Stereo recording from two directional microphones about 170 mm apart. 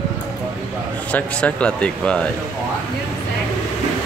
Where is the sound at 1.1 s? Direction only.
5° left (ahead or behind).